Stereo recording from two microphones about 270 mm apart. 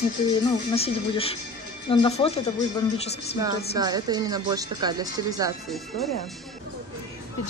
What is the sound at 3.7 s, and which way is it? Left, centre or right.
Speech, centre.